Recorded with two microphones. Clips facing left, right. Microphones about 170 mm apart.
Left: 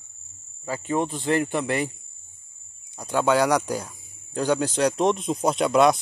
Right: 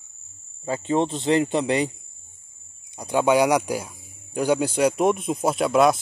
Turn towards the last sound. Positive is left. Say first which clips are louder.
# even
turn(degrees=0)  # may be behind; listen again after turning